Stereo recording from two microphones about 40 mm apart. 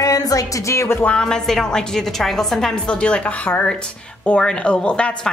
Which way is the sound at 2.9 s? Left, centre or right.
Left.